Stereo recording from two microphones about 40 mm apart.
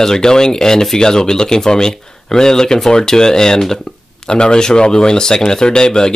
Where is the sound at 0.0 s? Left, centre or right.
Centre.